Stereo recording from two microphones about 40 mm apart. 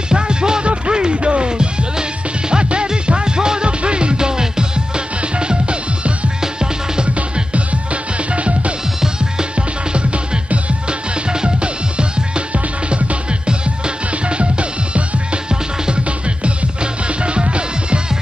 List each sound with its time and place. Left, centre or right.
0.1 s music: right
7.3 s music: right
9.0 s music: right